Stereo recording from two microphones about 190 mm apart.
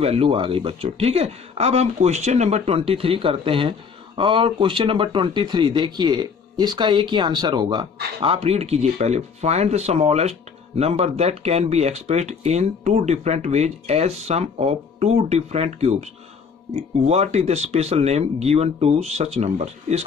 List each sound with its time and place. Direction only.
0.0 s speech: 30° right (ahead or behind)